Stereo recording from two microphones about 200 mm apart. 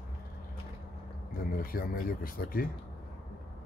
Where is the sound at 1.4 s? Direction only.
45° left (ahead or behind).